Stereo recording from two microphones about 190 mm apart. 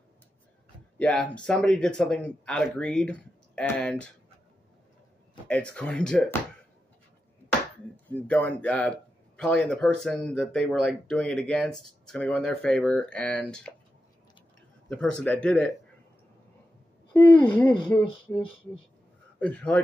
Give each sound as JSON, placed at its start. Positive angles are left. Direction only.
{"t": 0.9, "sound": "a man's voice", "side_deg": 5}
{"t": 5.5, "sound": "a man's voice", "side_deg": 5}
{"t": 8.1, "sound": "a man's voice", "side_deg": 10}
{"t": 14.9, "sound": "a man's voice", "side_deg": 5}
{"t": 17.1, "sound": "speech", "side_deg": 5}
{"t": 19.4, "sound": "speech", "side_deg": 5}